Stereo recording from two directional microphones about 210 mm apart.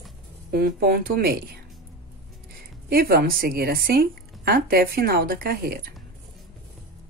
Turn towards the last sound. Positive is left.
turn(degrees=-45)  # may be behind; listen again after turning